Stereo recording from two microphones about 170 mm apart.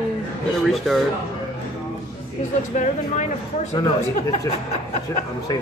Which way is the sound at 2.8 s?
45° left (ahead or behind).